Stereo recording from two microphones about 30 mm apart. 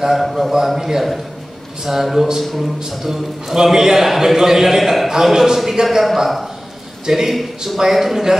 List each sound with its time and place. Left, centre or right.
0.2 s a man's voice: centre